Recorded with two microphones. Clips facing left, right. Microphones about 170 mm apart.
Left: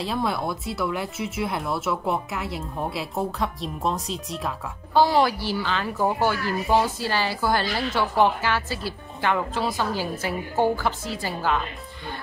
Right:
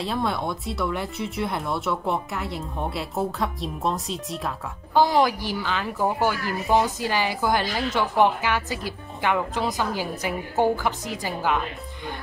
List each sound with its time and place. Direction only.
0.0 s speech: centre (ahead or behind)
4.9 s a woman's voice: 15° right (ahead or behind)